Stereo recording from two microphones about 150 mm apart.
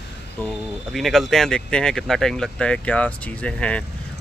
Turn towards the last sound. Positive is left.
turn(degrees=10)  # may be behind; listen again after turning